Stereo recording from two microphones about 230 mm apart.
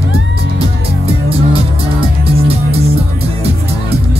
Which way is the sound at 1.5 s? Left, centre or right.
Right.